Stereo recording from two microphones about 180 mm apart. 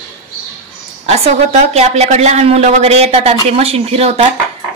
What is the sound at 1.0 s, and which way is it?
A woman's voice, 40° right (ahead or behind).